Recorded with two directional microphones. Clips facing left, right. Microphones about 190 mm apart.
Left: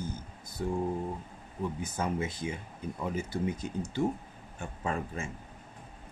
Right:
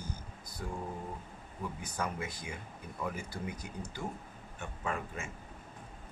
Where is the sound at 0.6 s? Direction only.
25° left (ahead or behind).